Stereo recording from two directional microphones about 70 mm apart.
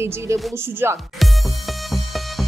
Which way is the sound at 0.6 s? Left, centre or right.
Right.